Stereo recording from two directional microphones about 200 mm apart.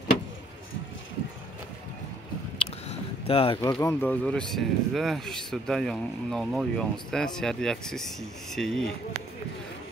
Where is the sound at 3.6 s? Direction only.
15° left (ahead or behind).